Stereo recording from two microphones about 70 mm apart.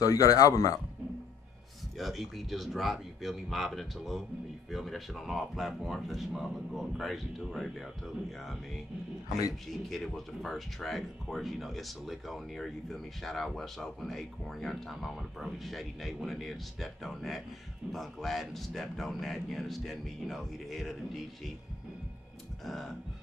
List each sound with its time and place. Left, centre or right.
0.0 s speech: left
2.0 s speech: centre
9.5 s speech: centre